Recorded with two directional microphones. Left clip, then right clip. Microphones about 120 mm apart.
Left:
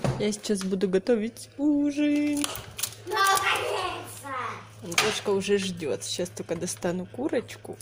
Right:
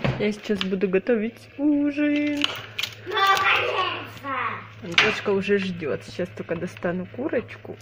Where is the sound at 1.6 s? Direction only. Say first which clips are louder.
Right 3 dB; 20° left (ahead or behind).